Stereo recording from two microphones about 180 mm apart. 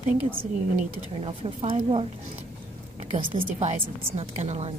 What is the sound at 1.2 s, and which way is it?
Speech, 30° right (ahead or behind).